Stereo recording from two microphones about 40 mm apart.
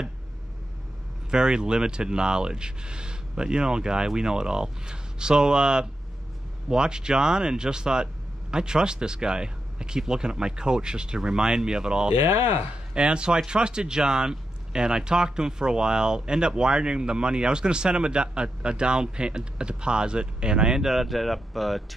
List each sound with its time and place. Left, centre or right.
1.3 s speech: right
12.1 s speech: right
12.9 s speech: right; by 21.8 s centre